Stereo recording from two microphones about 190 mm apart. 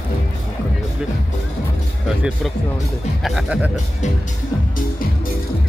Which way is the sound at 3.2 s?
5° right (ahead or behind).